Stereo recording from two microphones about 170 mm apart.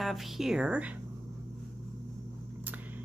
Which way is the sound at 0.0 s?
Centre (ahead or behind).